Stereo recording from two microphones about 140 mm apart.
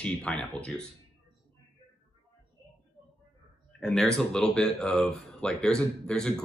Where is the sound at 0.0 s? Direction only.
10° left (ahead or behind).